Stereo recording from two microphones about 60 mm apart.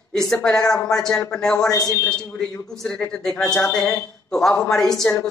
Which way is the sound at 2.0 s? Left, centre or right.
Centre.